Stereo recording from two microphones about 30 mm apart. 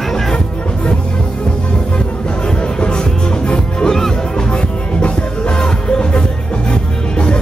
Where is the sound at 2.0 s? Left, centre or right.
Left.